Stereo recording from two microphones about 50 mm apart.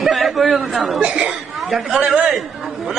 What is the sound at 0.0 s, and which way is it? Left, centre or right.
Chatter, centre.